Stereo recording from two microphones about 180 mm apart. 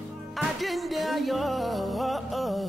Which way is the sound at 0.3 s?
Centre (ahead or behind).